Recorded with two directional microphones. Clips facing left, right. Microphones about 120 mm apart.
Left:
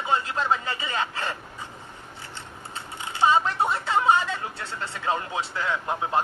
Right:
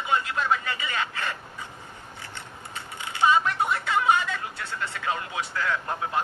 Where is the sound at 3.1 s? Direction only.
30° left (ahead or behind).